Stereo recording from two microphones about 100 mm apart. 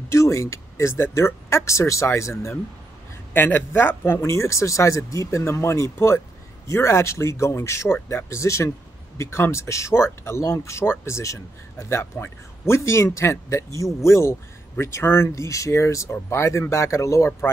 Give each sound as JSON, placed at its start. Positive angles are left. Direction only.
{"t": 0.1, "sound": "speech", "side_deg": 30}